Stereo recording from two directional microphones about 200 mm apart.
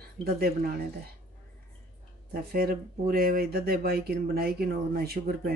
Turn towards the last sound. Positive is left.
turn(degrees=-50)  # may be behind; listen again after turning